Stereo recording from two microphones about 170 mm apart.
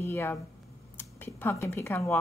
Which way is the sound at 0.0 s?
10° left (ahead or behind).